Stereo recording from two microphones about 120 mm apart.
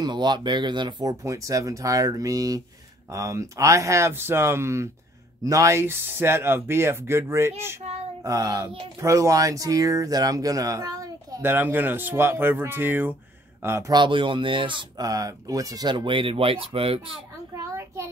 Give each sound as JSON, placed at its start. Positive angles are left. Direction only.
{"t": 0.0, "sound": "speech", "side_deg": -40}
{"t": 1.2, "sound": "speech", "side_deg": -25}
{"t": 11.4, "sound": "speech", "side_deg": -15}
{"t": 13.9, "sound": "speech", "side_deg": -45}
{"t": 15.0, "sound": "speech", "side_deg": -30}
{"t": 17.6, "sound": "a sound", "side_deg": -25}